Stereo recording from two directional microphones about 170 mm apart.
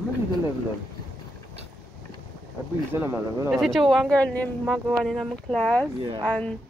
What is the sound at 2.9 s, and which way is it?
Speech, 15° right (ahead or behind).